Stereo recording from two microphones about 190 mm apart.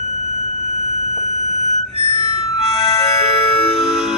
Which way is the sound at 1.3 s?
35° right (ahead or behind).